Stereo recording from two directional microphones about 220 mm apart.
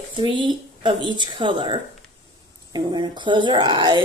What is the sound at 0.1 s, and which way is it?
Speech, 20° right (ahead or behind).